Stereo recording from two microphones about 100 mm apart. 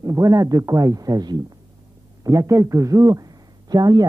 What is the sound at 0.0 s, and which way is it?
A man's voice, 30° right (ahead or behind).